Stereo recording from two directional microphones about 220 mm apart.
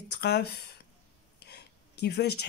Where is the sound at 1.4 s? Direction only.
50° left (ahead or behind).